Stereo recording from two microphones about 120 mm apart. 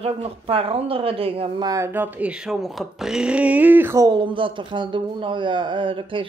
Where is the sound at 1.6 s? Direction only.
30° right (ahead or behind).